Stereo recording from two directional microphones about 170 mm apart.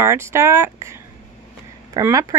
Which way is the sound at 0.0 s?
15° right (ahead or behind).